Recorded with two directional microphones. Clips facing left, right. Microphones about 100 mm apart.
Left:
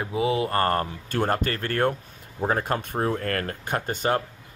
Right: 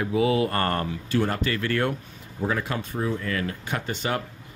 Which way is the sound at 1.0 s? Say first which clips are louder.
Right 1 dB; 50° left (ahead or behind).